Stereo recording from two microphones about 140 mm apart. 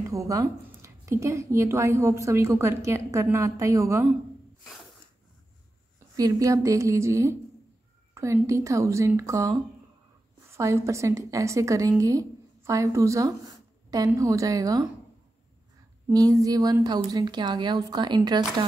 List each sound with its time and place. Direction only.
0.1 s a woman's voice: 25° right (ahead or behind)
6.1 s a woman's voice: 25° right (ahead or behind)
16.1 s a woman's voice: 25° right (ahead or behind)